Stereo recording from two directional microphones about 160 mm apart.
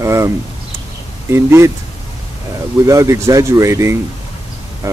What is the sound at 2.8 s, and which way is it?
Speech, 20° right (ahead or behind).